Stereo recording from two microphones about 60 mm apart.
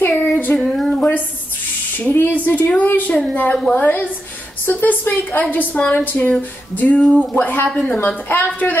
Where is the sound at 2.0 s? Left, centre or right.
Left.